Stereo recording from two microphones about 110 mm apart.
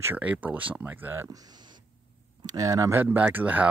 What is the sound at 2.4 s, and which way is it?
Speech, 30° right (ahead or behind).